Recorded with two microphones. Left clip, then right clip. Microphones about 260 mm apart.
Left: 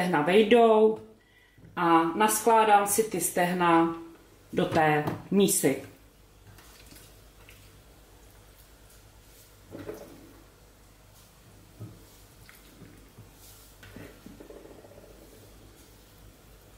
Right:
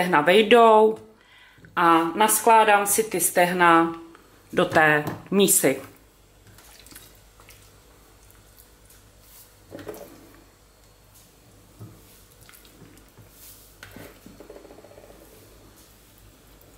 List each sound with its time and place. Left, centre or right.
0.0 s a woman's voice: centre
5.6 s a woman's voice: centre